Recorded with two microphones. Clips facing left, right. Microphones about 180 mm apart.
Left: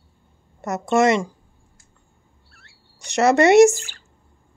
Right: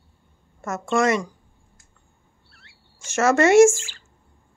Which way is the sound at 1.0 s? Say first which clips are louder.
Left 3 dB; 20° left (ahead or behind).